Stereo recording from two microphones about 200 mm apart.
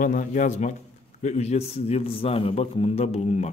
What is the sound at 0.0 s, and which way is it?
A man's voice, 40° left (ahead or behind).